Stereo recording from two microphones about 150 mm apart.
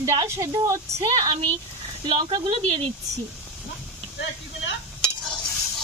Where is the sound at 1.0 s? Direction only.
35° right (ahead or behind).